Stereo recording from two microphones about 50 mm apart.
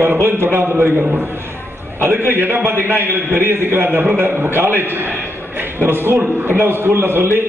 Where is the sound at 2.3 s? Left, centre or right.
Right.